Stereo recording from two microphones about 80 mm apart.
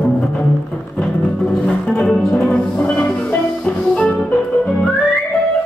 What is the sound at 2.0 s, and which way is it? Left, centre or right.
Music, centre.